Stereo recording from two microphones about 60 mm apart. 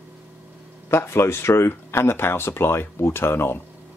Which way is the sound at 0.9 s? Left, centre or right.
Left.